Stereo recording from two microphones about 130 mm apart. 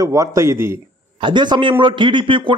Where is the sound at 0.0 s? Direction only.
25° right (ahead or behind).